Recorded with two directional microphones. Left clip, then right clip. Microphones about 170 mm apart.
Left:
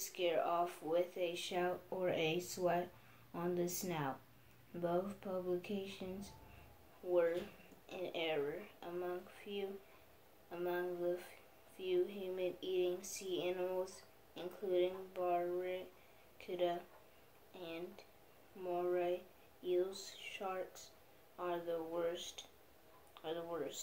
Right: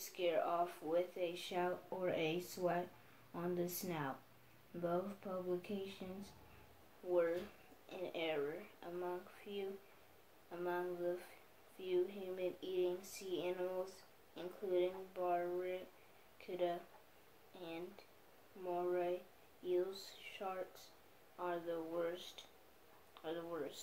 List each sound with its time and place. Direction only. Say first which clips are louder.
0.1 s speech: left 1 dB; 10° left (ahead or behind)